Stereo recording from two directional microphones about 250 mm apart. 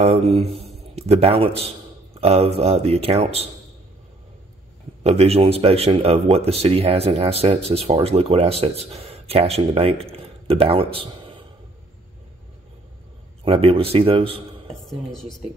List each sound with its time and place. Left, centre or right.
0.0 s speech: right
5.0 s speech: right
13.4 s speech: right
14.9 s speech: centre